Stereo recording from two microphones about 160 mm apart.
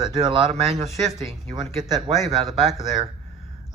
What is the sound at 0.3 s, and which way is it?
Speech, 35° right (ahead or behind).